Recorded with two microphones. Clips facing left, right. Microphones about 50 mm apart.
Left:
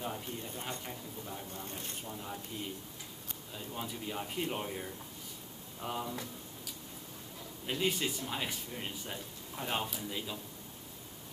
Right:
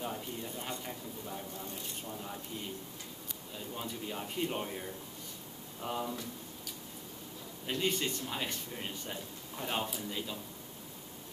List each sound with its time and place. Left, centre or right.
0.0 s a sound: centre
0.8 s speech: centre
3.5 s speech: centre
7.6 s speech: centre